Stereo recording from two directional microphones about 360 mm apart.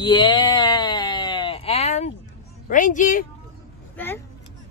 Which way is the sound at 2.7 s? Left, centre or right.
Left.